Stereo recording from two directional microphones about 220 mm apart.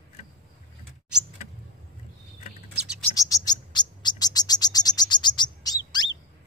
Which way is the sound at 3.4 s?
20° left (ahead or behind).